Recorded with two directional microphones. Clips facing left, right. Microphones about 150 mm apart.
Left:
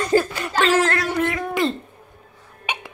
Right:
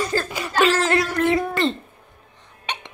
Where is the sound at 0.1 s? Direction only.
25° left (ahead or behind).